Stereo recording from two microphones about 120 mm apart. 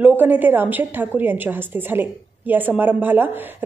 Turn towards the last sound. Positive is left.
turn(degrees=-15)  # may be behind; listen again after turning